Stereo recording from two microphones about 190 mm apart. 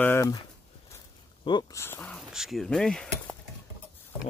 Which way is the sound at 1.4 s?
25° left (ahead or behind).